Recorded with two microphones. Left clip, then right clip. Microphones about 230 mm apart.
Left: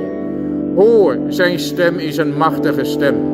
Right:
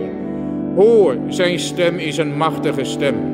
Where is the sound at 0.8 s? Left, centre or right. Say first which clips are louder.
Left 1 dB; centre.